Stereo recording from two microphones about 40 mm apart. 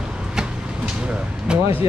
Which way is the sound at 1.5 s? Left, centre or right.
Right.